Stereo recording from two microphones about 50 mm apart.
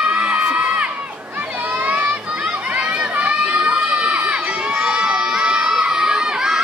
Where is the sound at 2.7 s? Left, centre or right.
Right.